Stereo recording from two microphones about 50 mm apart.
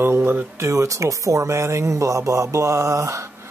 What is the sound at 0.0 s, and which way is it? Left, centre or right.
Speech, right.